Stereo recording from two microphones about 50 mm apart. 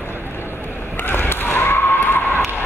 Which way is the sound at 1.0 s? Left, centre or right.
Left.